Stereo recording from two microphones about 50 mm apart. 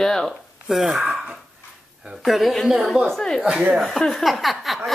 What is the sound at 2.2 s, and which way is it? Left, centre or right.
Speech, centre.